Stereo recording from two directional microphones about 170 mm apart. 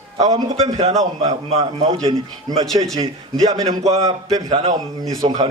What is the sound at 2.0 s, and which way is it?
A man's voice, 20° right (ahead or behind).